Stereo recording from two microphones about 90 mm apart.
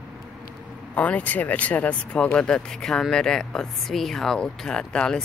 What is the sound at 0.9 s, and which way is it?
Speech, 15° left (ahead or behind).